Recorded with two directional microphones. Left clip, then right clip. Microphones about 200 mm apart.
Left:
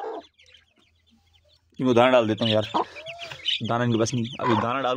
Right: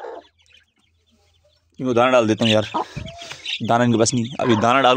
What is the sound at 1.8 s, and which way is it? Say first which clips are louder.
Speech: right 1 dB; 5° left (ahead or behind).